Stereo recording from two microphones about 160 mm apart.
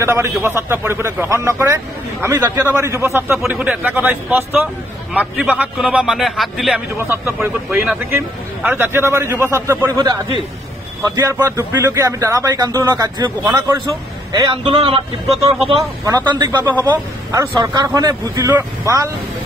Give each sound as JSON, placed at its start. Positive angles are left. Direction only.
{"t": 0.0, "sound": "a man's voice", "side_deg": -15}
{"t": 7.0, "sound": "a man's voice", "side_deg": -15}
{"t": 16.3, "sound": "a man's voice", "side_deg": -25}